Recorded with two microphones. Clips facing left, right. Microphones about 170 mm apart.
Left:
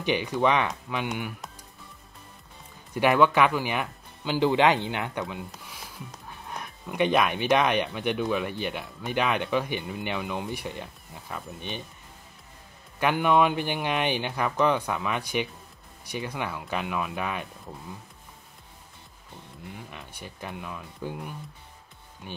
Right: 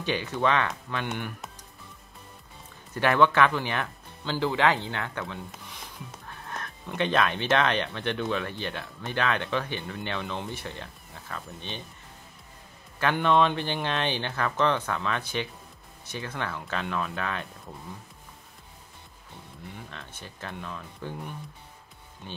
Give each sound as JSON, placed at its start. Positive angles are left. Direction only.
{"t": 0.0, "sound": "speech", "side_deg": 15}
{"t": 1.0, "sound": "speech", "side_deg": 5}
{"t": 2.9, "sound": "speech", "side_deg": 10}
{"t": 5.5, "sound": "music", "side_deg": 5}
{"t": 7.0, "sound": "speech", "side_deg": 15}
{"t": 13.0, "sound": "speech", "side_deg": 10}
{"t": 19.9, "sound": "speech", "side_deg": 15}